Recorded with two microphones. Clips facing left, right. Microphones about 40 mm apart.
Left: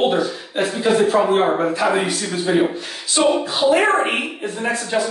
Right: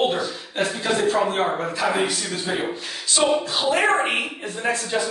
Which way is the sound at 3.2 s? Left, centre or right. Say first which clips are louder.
Left 4 dB; centre.